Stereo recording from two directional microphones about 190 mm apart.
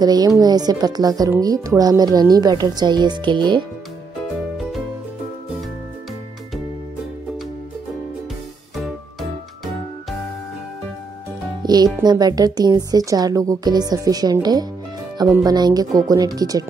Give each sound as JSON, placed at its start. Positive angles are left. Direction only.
{"t": 0.0, "sound": "speech", "side_deg": -20}
{"t": 11.6, "sound": "speech", "side_deg": -20}